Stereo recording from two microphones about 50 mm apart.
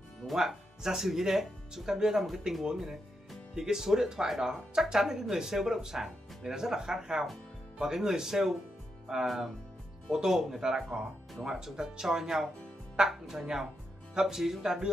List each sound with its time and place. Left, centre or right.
0.3 s speech: centre